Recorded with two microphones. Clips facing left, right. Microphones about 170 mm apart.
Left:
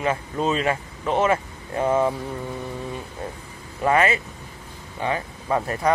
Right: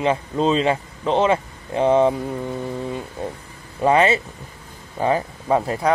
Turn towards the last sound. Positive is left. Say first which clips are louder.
# right 3 dB
turn(degrees=-15)  # may be behind; listen again after turning